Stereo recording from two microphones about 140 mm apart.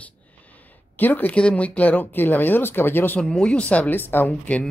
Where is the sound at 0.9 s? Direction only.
15° left (ahead or behind).